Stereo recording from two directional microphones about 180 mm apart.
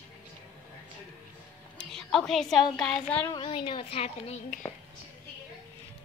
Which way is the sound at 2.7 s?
5° left (ahead or behind).